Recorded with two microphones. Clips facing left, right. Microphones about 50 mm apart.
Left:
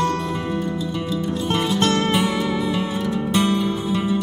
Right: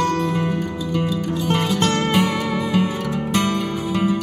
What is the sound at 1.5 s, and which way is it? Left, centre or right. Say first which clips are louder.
Music: even; right.